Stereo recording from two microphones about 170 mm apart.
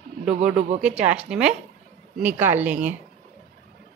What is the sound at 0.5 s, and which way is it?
Speech, 40° right (ahead or behind).